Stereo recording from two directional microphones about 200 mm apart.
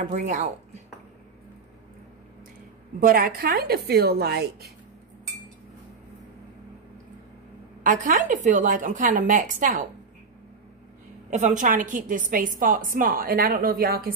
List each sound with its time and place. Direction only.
0.0 s a woman's voice: 40° right (ahead or behind)
3.0 s a woman's voice: 45° right (ahead or behind)
7.8 s a woman's voice: 40° right (ahead or behind)
11.2 s a woman's voice: 40° right (ahead or behind)